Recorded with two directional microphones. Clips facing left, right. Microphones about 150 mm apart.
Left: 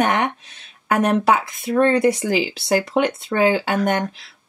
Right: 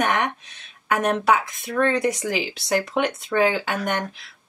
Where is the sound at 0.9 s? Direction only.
35° left (ahead or behind).